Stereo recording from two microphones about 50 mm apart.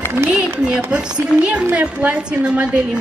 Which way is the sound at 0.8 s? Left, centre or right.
Right.